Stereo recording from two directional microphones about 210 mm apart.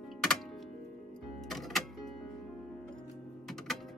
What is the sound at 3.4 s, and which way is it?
Music, centre (ahead or behind).